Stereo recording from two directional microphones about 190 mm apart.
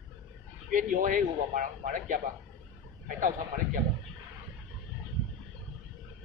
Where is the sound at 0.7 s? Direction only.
45° right (ahead or behind).